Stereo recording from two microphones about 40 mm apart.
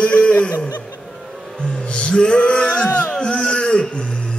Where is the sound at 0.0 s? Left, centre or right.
Left.